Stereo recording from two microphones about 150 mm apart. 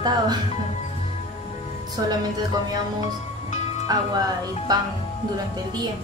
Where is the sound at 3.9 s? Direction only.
25° right (ahead or behind).